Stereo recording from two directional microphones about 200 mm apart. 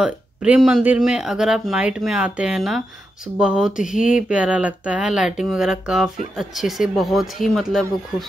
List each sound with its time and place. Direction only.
0.0 s speech: 5° right (ahead or behind)